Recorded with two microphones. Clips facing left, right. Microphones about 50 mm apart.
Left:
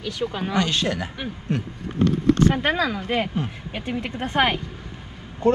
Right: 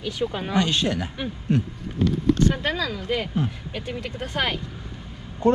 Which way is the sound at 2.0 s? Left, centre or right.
Centre.